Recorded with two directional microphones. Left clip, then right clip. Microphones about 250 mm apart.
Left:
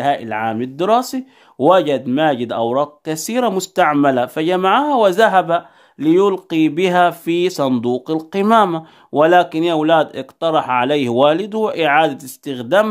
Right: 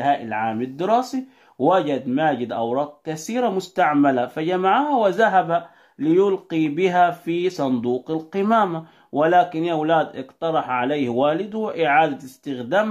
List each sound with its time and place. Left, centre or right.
0.0 s speech: left